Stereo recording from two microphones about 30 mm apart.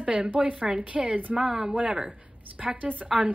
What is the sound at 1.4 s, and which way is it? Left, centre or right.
Speech, right.